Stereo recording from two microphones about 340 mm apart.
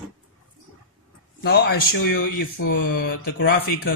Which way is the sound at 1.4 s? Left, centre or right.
Left.